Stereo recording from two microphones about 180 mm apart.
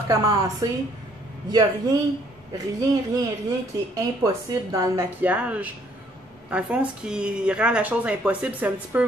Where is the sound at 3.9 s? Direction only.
20° right (ahead or behind).